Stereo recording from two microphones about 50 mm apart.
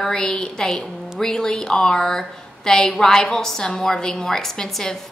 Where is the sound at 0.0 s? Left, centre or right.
Centre.